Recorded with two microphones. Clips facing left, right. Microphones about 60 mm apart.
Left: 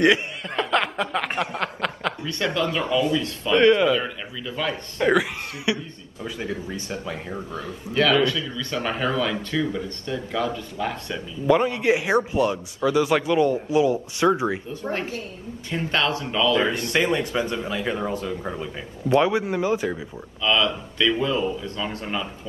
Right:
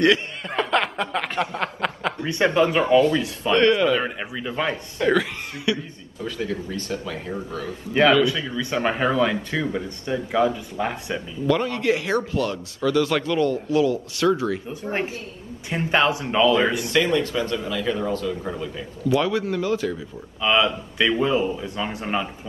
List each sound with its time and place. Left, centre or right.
0.5 s speech: centre
1.6 s snicker: centre
2.2 s speech: right
2.8 s speech: right
3.5 s speech: centre
4.0 s speech: right
5.0 s speech: centre
7.9 s speech: right
11.4 s speech: centre
14.7 s speech: right
16.9 s speech: left
20.4 s speech: right